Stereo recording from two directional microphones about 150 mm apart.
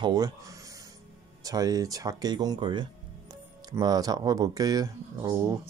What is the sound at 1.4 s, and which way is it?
Speech, 25° right (ahead or behind).